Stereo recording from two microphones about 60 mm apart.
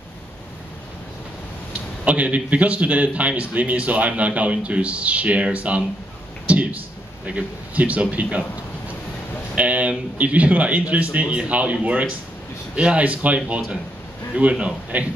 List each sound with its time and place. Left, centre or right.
2.0 s a man's voice: right
9.6 s a man's voice: right